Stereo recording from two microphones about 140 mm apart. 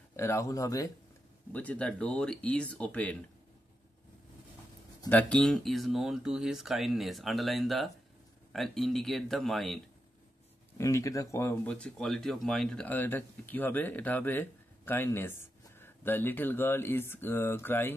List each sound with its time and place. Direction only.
0.1 s speech: 20° left (ahead or behind)
1.5 s speech: 10° left (ahead or behind)
5.1 s speech: 5° left (ahead or behind)
10.8 s speech: 25° left (ahead or behind)
11.6 s speech: 5° left (ahead or behind)